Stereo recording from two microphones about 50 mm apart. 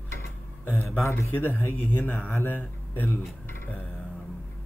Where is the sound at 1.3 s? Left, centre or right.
Left.